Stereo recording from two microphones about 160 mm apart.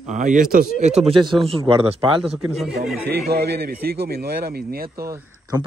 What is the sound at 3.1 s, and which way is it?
A man's voice, 85° right.